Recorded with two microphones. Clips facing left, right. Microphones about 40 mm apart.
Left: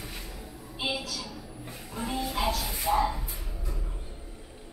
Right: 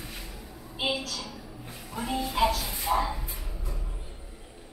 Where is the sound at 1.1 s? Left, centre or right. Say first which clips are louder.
Even; centre.